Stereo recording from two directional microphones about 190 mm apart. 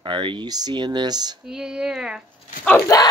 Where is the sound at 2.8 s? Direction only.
20° left (ahead or behind).